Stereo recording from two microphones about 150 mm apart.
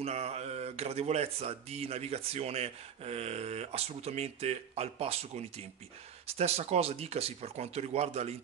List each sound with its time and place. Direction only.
0.0 s speech: 45° right (ahead or behind)